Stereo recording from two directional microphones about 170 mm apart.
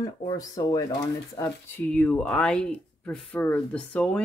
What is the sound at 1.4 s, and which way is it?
Speech, 10° left (ahead or behind).